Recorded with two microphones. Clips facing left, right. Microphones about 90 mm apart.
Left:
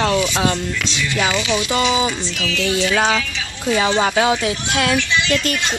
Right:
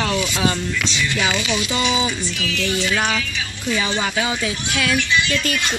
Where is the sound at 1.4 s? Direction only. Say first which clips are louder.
Left 3 dB; 30° left (ahead or behind).